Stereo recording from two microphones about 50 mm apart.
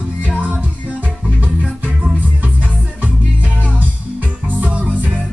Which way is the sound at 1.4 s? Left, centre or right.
Right.